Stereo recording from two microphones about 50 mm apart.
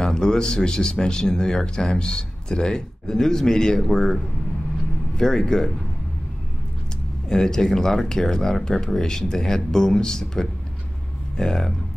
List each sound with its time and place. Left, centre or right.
0.0 s speech: centre
7.2 s speech: centre